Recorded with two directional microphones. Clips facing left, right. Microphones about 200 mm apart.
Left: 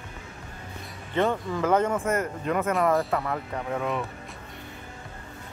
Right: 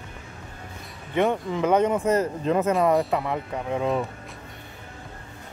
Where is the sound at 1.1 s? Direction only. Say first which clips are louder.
Right 2 dB; 15° right (ahead or behind).